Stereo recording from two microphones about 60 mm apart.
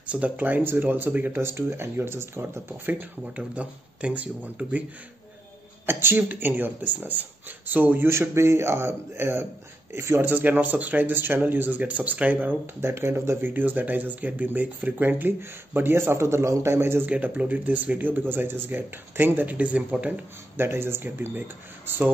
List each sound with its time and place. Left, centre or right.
0.0 s speech: right
1.4 s speech: right
2.8 s speech: right
5.9 s speech: right
8.1 s speech: right
10.3 s speech: right
12.8 s speech: right
13.5 s speech: right
17.1 s speech: right
20.5 s speech: right